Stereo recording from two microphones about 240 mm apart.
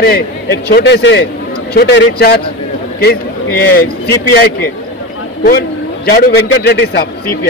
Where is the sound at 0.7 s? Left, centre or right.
Left.